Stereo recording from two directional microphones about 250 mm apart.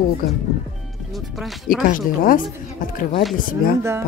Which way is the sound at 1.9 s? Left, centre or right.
Left.